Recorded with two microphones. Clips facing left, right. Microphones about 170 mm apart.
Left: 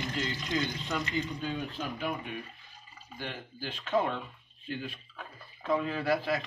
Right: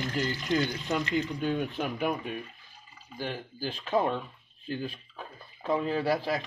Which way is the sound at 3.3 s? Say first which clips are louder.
Right 5 dB; 35° right (ahead or behind).